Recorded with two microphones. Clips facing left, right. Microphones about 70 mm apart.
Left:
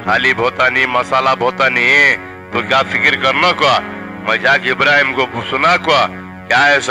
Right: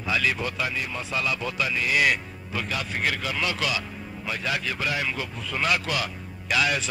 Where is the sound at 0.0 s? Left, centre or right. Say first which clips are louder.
Left 13 dB; left.